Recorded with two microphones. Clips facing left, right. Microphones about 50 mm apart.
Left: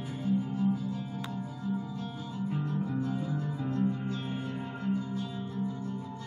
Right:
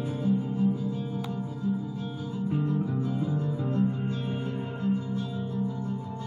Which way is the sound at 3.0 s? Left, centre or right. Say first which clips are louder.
Right 3 dB; right.